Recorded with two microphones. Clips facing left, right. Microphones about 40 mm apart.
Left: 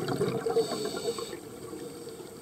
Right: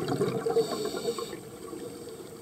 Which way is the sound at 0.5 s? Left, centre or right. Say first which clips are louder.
Right 1 dB; centre.